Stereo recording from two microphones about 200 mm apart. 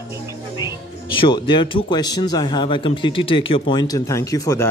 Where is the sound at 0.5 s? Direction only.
25° left (ahead or behind).